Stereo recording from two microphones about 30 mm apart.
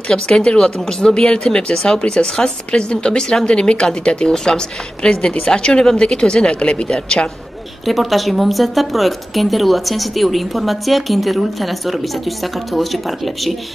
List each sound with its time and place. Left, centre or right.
0.1 s speech: left
3.5 s speech: left
6.6 s speech: left
7.8 s a woman's voice: centre